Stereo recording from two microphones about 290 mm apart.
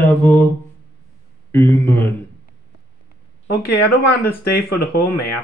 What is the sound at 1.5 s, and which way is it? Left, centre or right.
Speech, centre.